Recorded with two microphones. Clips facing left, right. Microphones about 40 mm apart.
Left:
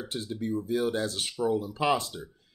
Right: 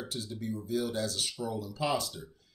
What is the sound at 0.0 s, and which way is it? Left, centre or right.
Speech, left.